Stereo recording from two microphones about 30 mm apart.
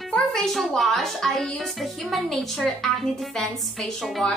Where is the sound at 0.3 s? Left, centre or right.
Centre.